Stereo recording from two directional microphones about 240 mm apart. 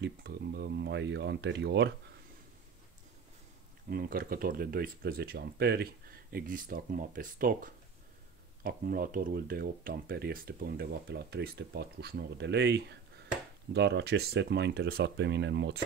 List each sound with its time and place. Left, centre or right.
0.0 s speech: right
3.9 s speech: right